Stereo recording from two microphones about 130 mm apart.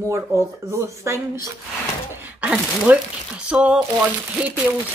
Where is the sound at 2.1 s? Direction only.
10° right (ahead or behind).